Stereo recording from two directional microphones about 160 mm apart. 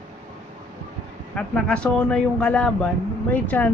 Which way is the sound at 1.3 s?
5° left (ahead or behind).